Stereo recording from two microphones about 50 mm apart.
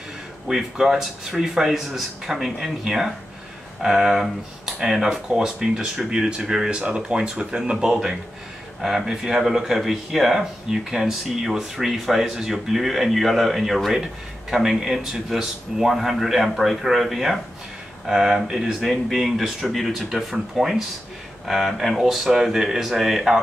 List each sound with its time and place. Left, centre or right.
0.5 s speech: centre